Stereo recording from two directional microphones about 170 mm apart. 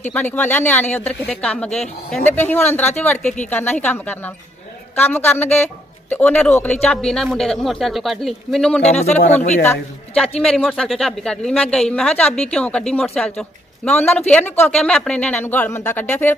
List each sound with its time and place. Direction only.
0.1 s a woman's voice: 10° left (ahead or behind)
8.8 s speech: 40° left (ahead or behind)
10.4 s a woman's voice: 5° left (ahead or behind)